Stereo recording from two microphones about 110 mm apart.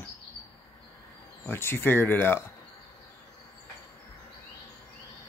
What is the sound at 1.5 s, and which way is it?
Speech, 20° left (ahead or behind).